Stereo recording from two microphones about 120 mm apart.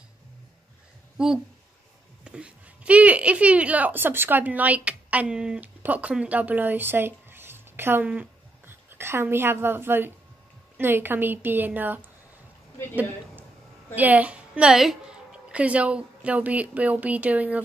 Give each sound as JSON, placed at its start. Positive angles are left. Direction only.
{"t": 1.1, "sound": "a woman's voice", "side_deg": -5}
{"t": 13.9, "sound": "a woman's voice", "side_deg": -15}